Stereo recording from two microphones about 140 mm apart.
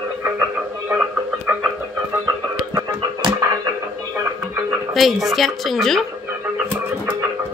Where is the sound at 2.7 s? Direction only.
25° right (ahead or behind).